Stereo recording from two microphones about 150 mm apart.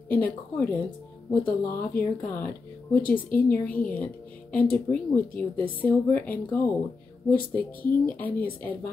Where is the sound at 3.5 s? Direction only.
10° left (ahead or behind).